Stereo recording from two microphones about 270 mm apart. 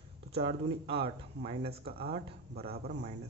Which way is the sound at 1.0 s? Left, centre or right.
Right.